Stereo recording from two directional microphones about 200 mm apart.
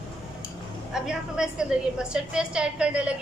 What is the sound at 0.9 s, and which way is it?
A woman's voice, 5° right (ahead or behind).